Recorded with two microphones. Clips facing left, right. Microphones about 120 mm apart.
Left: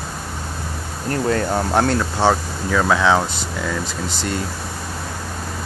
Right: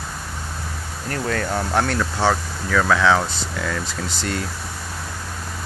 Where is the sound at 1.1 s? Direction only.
30° left (ahead or behind).